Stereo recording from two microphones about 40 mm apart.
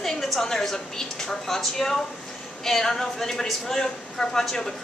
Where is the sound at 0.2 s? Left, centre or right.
Centre.